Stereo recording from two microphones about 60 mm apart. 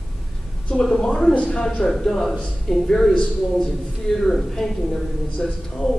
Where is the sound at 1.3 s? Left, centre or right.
Centre.